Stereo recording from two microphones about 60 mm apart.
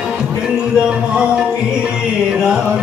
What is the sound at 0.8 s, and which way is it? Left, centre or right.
Speech, centre.